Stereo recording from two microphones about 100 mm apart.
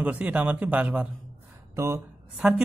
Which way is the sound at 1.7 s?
25° right (ahead or behind).